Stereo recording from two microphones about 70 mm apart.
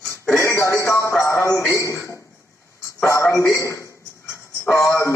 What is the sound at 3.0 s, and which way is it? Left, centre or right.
A man's voice, left.